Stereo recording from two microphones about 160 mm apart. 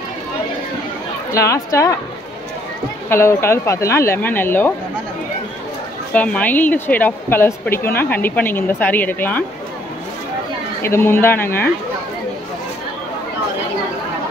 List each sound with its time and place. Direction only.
1.3 s speech: 20° left (ahead or behind)
3.1 s a woman's voice: 15° left (ahead or behind)
6.1 s a woman's voice: 10° left (ahead or behind)
10.8 s a woman's voice: 15° left (ahead or behind)